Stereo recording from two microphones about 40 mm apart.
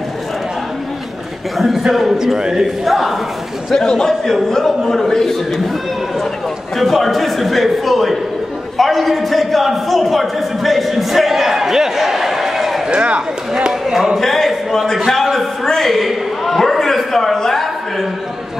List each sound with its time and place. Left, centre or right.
1.6 s a man's voice: centre
2.8 s a man's voice: centre
3.7 s a man's voice: centre
6.8 s a man's voice: centre
12.8 s speech: right
13.6 s a sound: centre
14.1 s a man's voice: centre